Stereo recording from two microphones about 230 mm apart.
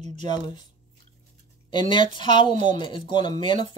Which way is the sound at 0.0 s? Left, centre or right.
Right.